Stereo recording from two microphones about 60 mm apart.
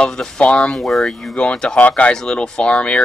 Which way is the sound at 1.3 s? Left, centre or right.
Centre.